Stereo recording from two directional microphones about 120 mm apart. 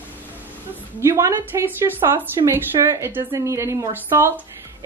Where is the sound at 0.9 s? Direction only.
25° right (ahead or behind).